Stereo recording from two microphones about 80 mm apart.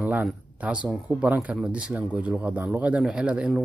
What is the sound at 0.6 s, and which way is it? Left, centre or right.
Speech, centre.